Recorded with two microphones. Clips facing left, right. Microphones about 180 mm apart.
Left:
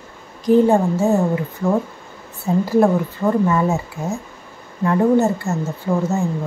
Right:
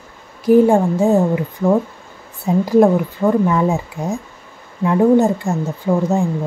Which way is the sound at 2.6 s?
15° right (ahead or behind).